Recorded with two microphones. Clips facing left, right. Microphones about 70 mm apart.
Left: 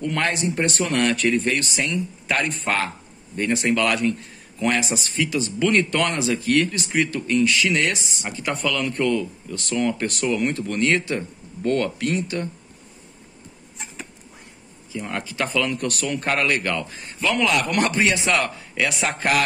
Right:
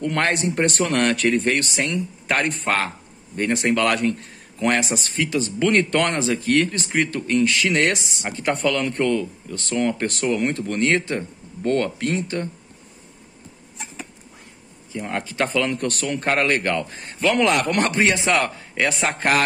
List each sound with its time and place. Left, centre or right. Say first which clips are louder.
0.0 s speech: right 2 dB; right
15.0 s speech: right 2 dB; right